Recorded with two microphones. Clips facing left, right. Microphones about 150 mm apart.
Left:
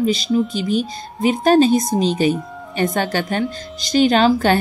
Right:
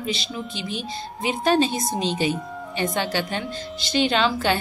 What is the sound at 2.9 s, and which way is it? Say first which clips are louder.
A woman's voice: left 5 dB; 50° left (ahead or behind).